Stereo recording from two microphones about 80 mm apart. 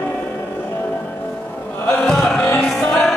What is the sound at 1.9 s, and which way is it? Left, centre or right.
Chant, centre.